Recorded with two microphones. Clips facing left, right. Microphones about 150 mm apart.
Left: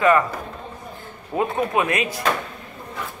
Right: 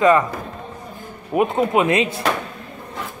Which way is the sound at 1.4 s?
20° right (ahead or behind).